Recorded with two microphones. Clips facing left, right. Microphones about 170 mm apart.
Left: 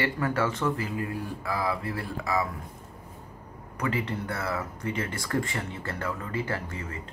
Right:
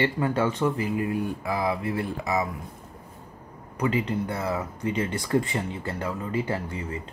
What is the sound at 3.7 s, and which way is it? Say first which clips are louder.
Speech: right 4 dB; 20° right (ahead or behind).